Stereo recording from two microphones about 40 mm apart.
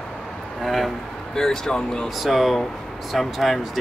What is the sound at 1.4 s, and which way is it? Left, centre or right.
Speech, centre.